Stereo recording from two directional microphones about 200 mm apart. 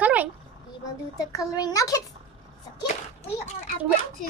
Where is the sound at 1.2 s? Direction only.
15° left (ahead or behind).